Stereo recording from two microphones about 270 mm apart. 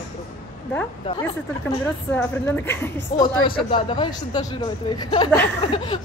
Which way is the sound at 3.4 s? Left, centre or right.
Centre.